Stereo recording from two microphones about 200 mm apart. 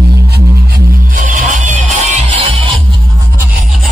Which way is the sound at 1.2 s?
40° right (ahead or behind).